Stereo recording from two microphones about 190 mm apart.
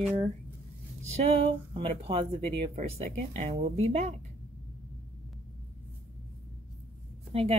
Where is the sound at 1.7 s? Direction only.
30° right (ahead or behind).